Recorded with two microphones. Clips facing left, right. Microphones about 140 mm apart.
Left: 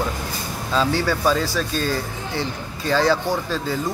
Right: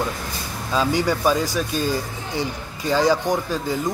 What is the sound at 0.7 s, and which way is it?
Speech, 15° right (ahead or behind).